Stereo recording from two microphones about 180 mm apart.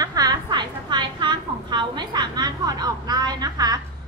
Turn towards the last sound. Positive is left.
turn(degrees=-20)  # may be behind; listen again after turning